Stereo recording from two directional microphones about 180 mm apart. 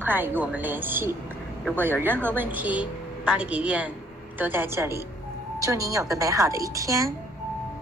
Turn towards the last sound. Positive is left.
turn(degrees=-15)  # may be behind; listen again after turning